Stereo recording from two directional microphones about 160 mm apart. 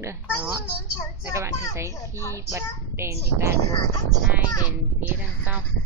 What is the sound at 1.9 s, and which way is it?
Vehicle, 15° left (ahead or behind).